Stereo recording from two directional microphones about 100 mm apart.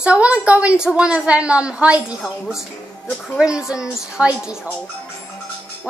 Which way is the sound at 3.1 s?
10° left (ahead or behind).